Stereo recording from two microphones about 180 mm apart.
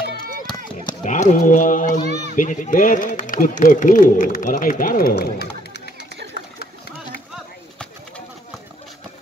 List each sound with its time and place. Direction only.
1.0 s speech: 45° left (ahead or behind); by 5.8 s 65° left (ahead or behind)